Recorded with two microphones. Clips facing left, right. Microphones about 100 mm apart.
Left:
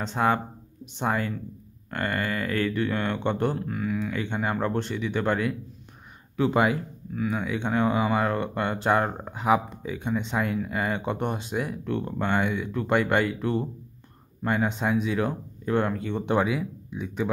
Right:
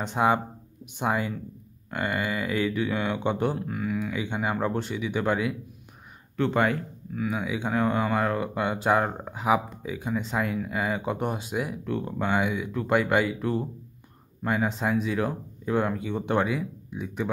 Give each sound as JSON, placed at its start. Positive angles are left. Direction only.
{"t": 0.0, "sound": "speech", "side_deg": -15}
{"t": 6.3, "sound": "speech", "side_deg": 5}
{"t": 7.2, "sound": "speech", "side_deg": -5}
{"t": 16.3, "sound": "speech", "side_deg": 5}